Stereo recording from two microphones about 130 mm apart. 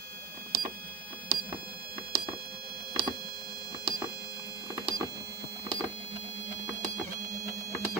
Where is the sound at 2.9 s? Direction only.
30° left (ahead or behind).